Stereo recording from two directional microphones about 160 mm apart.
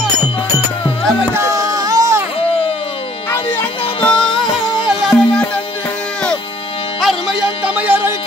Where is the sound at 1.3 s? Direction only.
20° right (ahead or behind).